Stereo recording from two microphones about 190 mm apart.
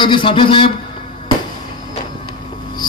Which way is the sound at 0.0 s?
25° left (ahead or behind).